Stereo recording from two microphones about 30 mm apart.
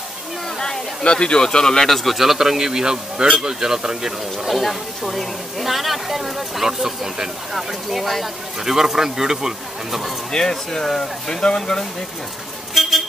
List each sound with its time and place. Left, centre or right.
1.1 s speech: left
1.9 s speech: centre
2.1 s speech: centre
4.5 s speech: centre
10.3 s speech: centre
11.0 s speech: left